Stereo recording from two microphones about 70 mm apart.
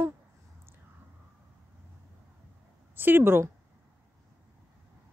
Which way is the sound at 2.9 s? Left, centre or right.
Right.